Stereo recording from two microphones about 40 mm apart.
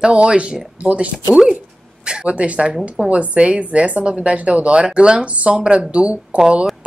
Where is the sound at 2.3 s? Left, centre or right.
Right.